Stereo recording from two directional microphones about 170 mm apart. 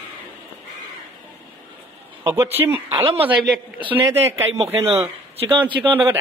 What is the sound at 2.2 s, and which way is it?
A man's voice, 15° right (ahead or behind).